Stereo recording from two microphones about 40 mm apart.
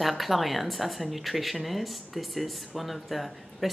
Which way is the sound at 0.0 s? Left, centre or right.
Centre.